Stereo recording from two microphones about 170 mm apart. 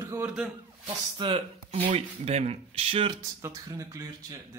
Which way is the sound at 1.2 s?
35° right (ahead or behind).